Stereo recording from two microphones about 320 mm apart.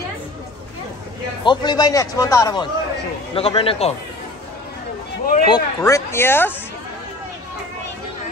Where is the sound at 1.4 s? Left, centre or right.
Centre.